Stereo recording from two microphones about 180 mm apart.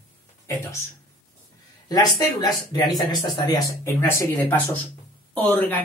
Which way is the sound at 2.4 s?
20° left (ahead or behind).